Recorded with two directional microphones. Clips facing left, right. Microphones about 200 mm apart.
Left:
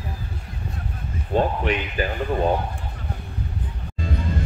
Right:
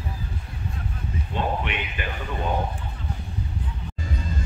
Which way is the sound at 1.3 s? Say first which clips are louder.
Left 6 dB; 40° left (ahead or behind).